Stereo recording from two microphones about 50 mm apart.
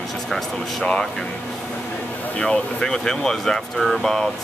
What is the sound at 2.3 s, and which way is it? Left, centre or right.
Speech, centre.